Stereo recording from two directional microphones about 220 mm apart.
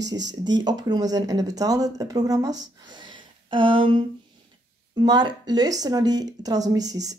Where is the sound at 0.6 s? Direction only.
20° right (ahead or behind).